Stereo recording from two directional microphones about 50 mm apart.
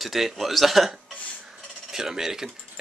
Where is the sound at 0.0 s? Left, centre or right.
Centre.